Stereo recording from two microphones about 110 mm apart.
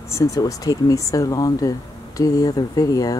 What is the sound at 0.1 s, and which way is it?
Speech, 30° left (ahead or behind).